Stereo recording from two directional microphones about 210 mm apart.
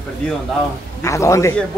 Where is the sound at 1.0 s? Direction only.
15° left (ahead or behind).